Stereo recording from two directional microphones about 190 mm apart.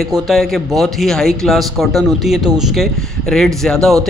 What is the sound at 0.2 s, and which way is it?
Speech, centre (ahead or behind).